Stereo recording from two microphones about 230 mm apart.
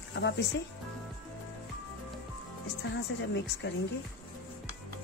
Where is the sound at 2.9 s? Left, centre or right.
Left.